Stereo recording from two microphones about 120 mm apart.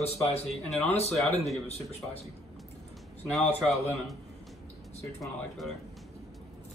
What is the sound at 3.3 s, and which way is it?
Speech, centre (ahead or behind).